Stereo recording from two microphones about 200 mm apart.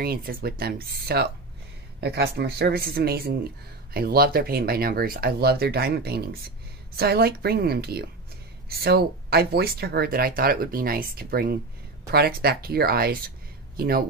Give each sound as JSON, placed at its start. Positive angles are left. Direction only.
{"t": 0.0, "sound": "speech", "side_deg": -50}